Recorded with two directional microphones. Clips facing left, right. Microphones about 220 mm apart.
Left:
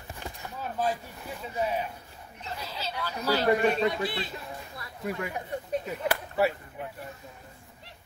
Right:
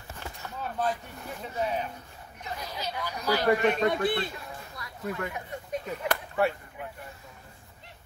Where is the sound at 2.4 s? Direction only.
15° right (ahead or behind).